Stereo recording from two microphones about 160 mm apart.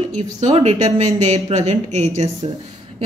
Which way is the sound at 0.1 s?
45° right (ahead or behind).